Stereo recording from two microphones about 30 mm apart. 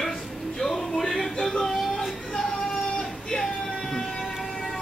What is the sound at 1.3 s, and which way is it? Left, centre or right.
Music, left.